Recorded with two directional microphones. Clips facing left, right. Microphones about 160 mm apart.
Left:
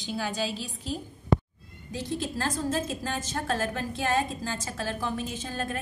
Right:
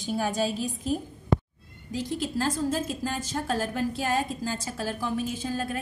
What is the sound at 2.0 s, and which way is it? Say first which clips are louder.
A woman's voice: right 2 dB; 10° right (ahead or behind).